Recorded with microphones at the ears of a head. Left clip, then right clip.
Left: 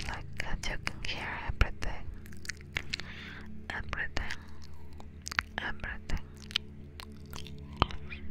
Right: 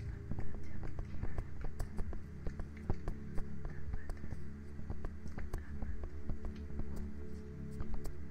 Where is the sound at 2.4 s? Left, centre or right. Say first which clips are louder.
Left 11 dB; left.